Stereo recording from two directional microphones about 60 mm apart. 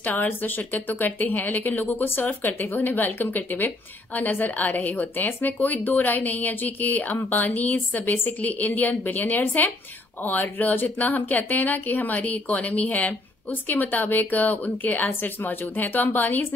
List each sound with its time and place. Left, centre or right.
0.0 s speech: left